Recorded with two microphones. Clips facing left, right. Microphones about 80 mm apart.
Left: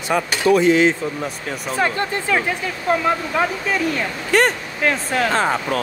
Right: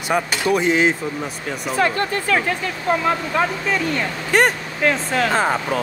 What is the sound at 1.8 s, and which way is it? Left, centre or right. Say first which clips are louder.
Speech: right 1 dB; centre.